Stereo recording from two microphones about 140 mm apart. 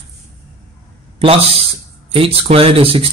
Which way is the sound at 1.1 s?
45° right (ahead or behind).